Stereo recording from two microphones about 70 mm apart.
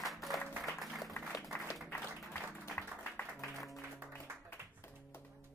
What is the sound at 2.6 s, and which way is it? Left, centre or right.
Music, left.